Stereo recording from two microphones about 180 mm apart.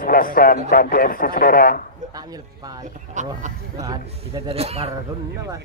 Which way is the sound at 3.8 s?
20° right (ahead or behind).